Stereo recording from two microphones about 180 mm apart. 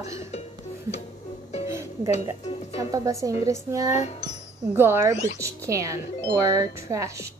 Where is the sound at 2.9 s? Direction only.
20° right (ahead or behind).